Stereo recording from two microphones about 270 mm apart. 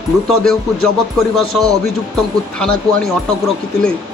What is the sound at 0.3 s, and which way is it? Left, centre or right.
A man's voice, centre.